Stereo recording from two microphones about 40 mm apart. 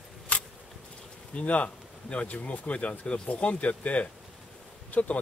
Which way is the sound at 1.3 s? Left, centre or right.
Left.